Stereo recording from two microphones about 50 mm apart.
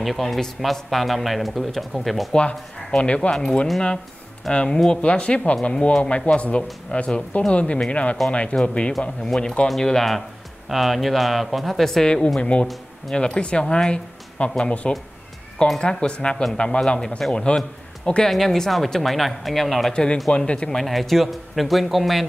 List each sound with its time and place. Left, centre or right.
0.0 s speech: centre
2.9 s speech: left
4.5 s speech: centre
5.0 s speech: left; by 12.1 s centre
12.4 s a man's voice: left; by 19.9 s centre
19.9 s speech: centre
20.7 s speech: centre